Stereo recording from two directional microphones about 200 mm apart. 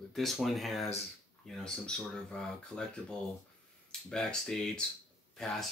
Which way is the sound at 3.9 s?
5° left (ahead or behind).